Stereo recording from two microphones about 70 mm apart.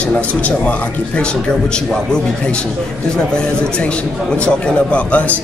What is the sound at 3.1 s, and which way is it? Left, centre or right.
A man's voice, centre.